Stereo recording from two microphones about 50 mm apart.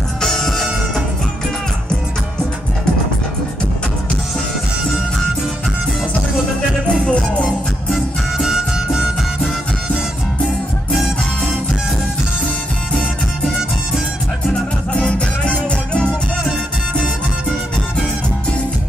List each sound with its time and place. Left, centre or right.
0.2 s music: centre
6.9 s music: left
8.4 s music: centre
15.0 s music: left